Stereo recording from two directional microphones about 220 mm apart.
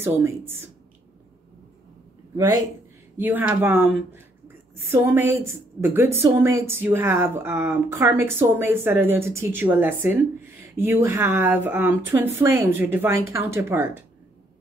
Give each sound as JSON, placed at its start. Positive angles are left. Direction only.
{"t": 0.0, "sound": "speech", "side_deg": -10}
{"t": 2.3, "sound": "speech", "side_deg": -15}